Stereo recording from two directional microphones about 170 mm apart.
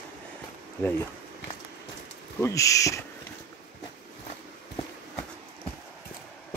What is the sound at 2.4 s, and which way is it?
Speech, 20° left (ahead or behind).